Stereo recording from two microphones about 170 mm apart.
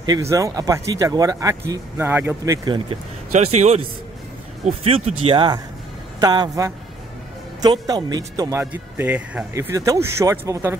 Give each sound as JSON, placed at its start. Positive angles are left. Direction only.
{"t": 0.0, "sound": "speech", "side_deg": -20}
{"t": 3.3, "sound": "speech", "side_deg": -40}